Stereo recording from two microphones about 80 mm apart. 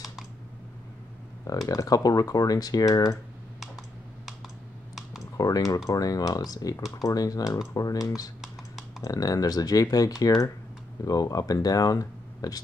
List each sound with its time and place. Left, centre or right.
1.7 s speech: left
5.4 s speech: left